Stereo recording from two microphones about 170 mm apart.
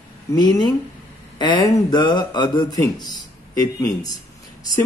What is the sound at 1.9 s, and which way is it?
Speech, 25° left (ahead or behind).